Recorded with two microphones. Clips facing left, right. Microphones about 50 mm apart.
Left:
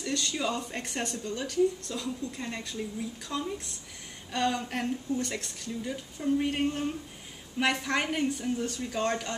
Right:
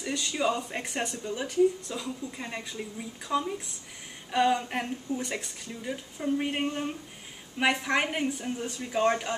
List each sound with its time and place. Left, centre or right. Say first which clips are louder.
0.0 s speech: right 2 dB; centre